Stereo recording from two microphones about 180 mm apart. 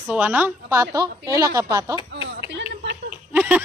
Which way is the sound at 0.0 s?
10° right (ahead or behind).